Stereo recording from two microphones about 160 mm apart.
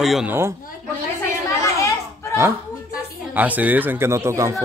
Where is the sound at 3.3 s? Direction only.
10° right (ahead or behind).